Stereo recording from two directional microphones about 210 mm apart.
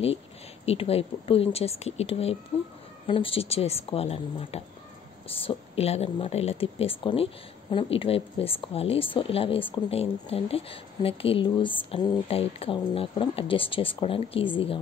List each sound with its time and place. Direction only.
0.7 s speech: 30° left (ahead or behind)